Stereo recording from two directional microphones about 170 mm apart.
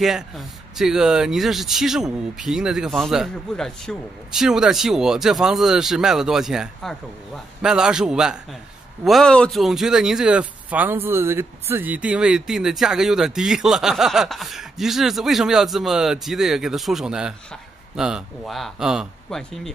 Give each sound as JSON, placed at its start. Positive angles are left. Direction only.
{"t": 0.0, "sound": "speech", "side_deg": 0}